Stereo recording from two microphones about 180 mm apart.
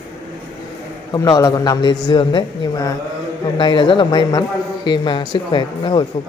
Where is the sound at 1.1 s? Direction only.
20° left (ahead or behind).